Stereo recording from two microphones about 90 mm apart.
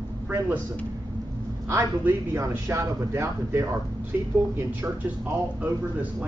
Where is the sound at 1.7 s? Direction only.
30° right (ahead or behind).